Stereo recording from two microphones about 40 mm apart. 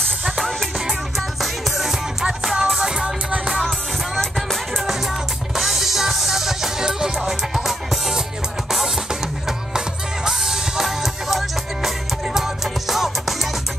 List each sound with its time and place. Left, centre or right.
1.4 s music: centre
3.3 s music: right
4.2 s music: centre
5.6 s music: centre
9.8 s music: centre